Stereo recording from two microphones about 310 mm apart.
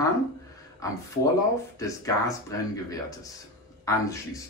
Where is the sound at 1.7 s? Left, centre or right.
Centre.